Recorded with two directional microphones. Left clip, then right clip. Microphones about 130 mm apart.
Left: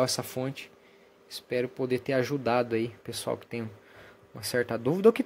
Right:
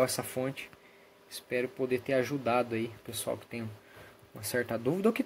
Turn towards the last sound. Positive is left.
turn(degrees=25)  # may be behind; listen again after turning